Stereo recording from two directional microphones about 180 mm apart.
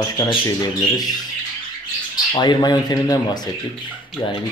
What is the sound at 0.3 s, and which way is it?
Speech, 20° left (ahead or behind).